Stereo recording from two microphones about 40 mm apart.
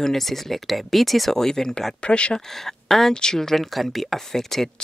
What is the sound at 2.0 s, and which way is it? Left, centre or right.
Speech, left.